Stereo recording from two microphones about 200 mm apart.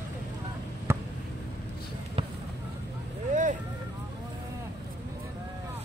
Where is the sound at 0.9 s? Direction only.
10° right (ahead or behind).